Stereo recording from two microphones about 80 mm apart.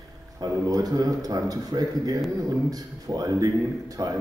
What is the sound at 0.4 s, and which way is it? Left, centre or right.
A man's voice, right.